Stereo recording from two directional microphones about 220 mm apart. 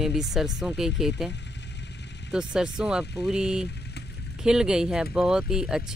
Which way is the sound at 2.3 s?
5° right (ahead or behind).